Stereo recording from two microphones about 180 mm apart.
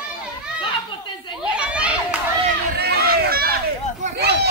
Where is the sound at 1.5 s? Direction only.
5° right (ahead or behind).